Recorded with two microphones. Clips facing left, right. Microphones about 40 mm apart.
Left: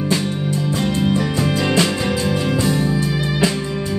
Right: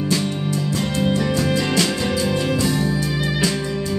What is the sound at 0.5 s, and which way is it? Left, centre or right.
Music, left.